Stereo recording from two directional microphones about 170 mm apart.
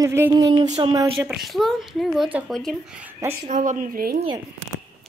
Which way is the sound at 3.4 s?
45° right (ahead or behind).